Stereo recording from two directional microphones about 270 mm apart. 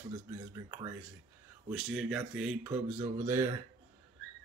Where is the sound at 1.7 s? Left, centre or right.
Centre.